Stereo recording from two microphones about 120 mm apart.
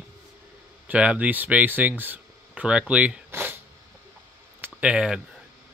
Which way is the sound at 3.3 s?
15° right (ahead or behind).